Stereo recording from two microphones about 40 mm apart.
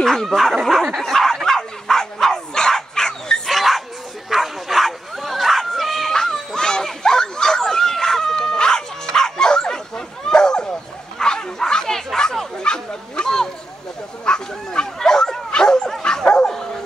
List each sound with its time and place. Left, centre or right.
0.0 s speech: centre
1.0 s dog: centre
3.4 s dog: centre
4.3 s bow-wow: centre
6.1 s a sound: centre
12.6 s bow-wow: left